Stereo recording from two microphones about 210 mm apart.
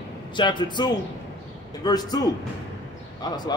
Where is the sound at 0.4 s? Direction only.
20° left (ahead or behind).